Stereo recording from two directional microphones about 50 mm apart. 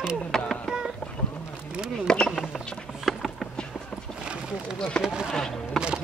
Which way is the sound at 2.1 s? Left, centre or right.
Centre.